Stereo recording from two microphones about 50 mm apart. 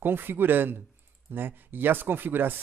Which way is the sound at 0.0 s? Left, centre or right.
Right.